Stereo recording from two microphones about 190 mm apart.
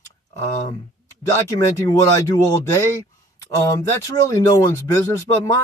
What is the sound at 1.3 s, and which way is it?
Speech, 15° left (ahead or behind).